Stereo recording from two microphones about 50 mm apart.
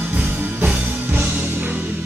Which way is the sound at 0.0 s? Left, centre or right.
Right.